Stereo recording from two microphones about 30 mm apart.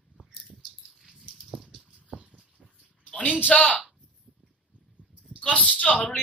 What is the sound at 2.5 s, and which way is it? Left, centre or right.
Dog, left.